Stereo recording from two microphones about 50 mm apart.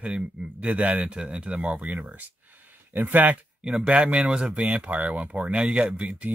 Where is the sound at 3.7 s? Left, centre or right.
Right.